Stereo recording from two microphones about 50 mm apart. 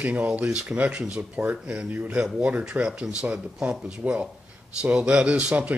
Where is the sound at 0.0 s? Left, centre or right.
Right.